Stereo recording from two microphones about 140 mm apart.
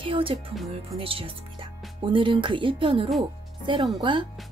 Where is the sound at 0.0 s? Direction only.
40° right (ahead or behind).